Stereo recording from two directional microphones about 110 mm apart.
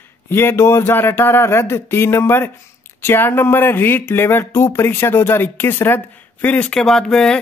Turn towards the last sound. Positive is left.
turn(degrees=5)  # may be behind; listen again after turning